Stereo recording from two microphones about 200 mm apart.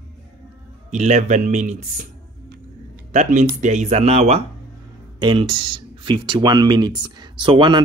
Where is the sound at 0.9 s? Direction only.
35° right (ahead or behind).